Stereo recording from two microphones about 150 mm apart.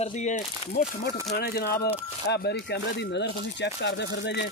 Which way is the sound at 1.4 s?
90° left.